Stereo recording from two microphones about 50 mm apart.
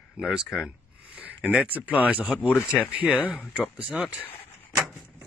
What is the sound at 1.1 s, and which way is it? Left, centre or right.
Speech, right.